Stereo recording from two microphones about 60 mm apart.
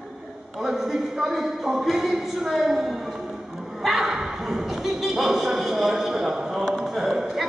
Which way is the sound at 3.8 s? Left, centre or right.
Centre.